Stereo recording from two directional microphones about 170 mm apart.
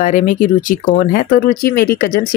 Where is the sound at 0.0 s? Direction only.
50° left (ahead or behind).